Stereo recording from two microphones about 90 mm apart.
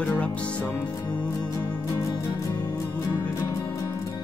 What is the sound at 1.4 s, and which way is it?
Music, 50° left (ahead or behind).